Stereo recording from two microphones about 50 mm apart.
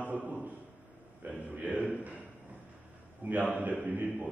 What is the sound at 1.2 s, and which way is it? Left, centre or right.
Mantra, right.